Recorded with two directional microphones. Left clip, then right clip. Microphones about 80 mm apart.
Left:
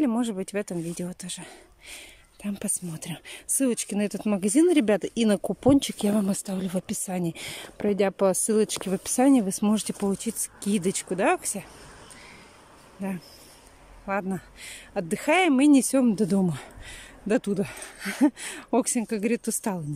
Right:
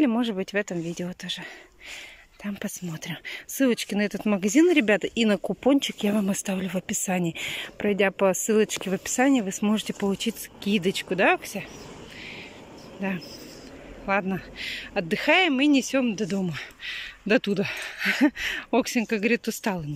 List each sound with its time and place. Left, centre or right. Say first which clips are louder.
0.0 s speech: right 2 dB; centre
2.4 s speech: even; left
14.0 s speech: right 4 dB; centre
14.7 s speech: right 3 dB; left
15.8 s speech: left 2 dB; left
16.3 s speech: left 3 dB; left
17.3 s speech: right 3 dB; left
18.4 s speech: right 2 dB; left